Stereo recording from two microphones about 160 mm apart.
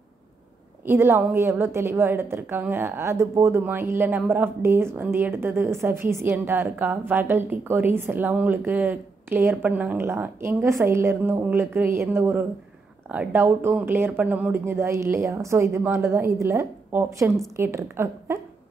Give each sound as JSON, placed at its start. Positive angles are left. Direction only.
{"t": 0.8, "sound": "a woman's voice", "side_deg": -15}